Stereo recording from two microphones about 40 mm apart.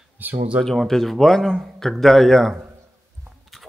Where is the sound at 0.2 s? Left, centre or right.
Right.